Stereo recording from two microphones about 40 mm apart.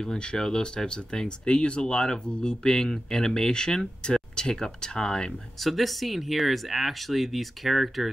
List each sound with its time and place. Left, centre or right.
0.0 s speech: centre
5.6 s speech: centre